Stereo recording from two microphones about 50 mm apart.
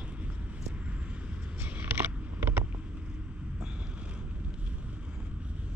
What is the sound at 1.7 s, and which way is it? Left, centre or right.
Vehicle, right.